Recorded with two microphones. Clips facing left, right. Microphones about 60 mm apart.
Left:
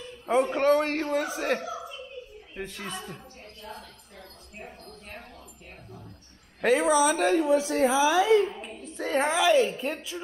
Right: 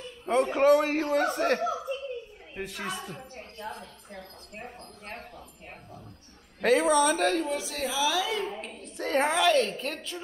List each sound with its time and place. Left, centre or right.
0.3 s a man's voice: centre
2.5 s a woman's voice: centre
3.6 s a sound: right
6.6 s a woman's voice: centre
7.5 s a woman's voice: left
8.5 s a woman's voice: centre